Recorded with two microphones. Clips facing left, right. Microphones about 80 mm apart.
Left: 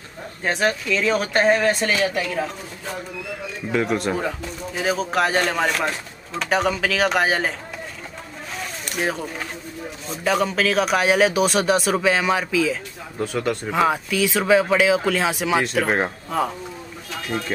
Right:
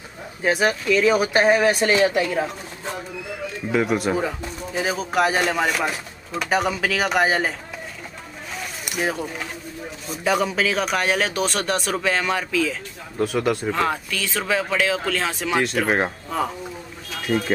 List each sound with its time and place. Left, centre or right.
0.4 s speech: centre
2.0 s a woman's voice: right
3.7 s a man's voice: centre
8.8 s a man's voice: centre
13.7 s speech: centre